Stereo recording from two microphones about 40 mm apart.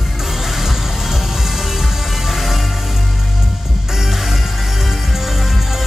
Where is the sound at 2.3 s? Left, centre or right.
Centre.